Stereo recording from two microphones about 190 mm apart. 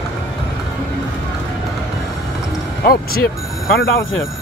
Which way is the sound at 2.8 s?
50° left (ahead or behind).